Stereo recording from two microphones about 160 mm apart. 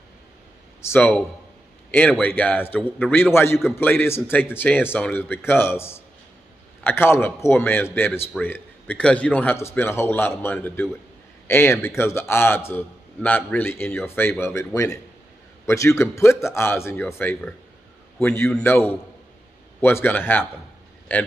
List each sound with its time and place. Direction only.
0.8 s a man's voice: 15° left (ahead or behind)